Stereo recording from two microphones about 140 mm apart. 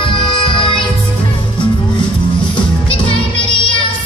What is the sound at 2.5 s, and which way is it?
Music, 35° left (ahead or behind).